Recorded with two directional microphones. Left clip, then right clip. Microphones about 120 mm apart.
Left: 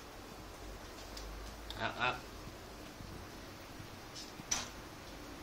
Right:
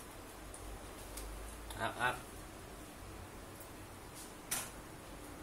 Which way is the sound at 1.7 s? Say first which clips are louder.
Even; 15° left (ahead or behind).